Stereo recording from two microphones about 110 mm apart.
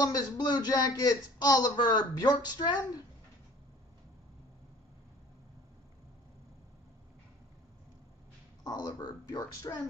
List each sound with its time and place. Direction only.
0.0 s a man's voice: 40° left (ahead or behind)
8.6 s a man's voice: 40° left (ahead or behind)